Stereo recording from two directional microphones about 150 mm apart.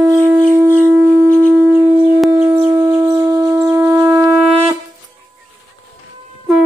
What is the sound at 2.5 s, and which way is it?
Shofar, 25° right (ahead or behind).